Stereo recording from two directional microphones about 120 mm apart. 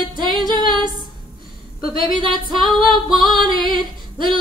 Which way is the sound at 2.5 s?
Centre (ahead or behind).